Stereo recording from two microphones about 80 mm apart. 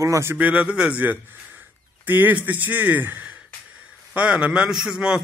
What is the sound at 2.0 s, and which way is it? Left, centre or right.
A man's voice, right.